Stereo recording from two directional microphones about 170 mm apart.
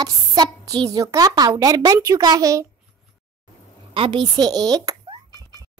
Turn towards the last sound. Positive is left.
turn(degrees=-25)  # may be behind; listen again after turning